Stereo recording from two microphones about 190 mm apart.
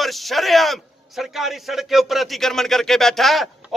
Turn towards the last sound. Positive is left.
turn(degrees=0)  # may be behind; listen again after turning